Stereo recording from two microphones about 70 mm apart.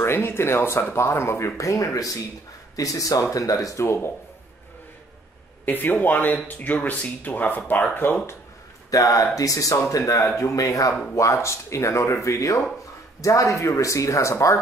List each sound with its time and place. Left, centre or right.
0.0 s speech: left
5.7 s speech: left
8.9 s speech: left